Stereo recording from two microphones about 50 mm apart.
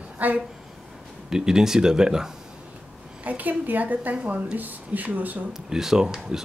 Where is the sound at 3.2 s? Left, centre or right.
Right.